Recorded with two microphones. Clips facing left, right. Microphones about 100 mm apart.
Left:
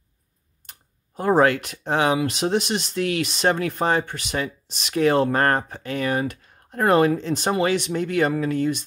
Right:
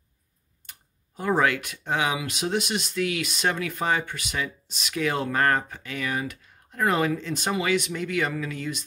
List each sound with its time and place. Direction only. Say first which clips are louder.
0.7 s speech: left 2 dB; 40° left (ahead or behind)
7.2 s speech: left 6 dB; 30° left (ahead or behind)